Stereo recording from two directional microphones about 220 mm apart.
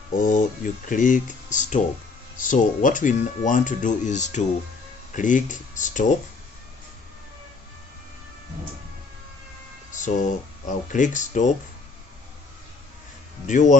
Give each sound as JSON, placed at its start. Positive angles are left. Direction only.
{"t": 0.2, "sound": "speech", "side_deg": 35}
{"t": 9.9, "sound": "speech", "side_deg": 35}
{"t": 13.5, "sound": "speech", "side_deg": 35}